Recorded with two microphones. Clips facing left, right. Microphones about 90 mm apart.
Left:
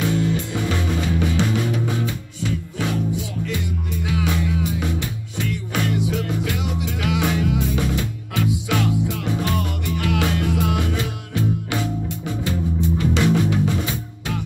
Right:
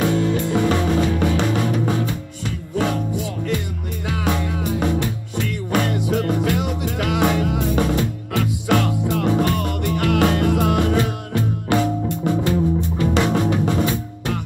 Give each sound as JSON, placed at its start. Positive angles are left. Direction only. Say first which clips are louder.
{"t": 0.0, "sound": "music", "louder": "right 3 dB", "side_deg": -50}
{"t": 4.1, "sound": "music", "louder": "right 1 dB", "side_deg": -50}